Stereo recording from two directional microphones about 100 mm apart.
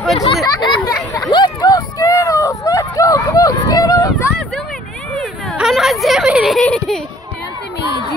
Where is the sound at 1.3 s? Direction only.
45° left (ahead or behind).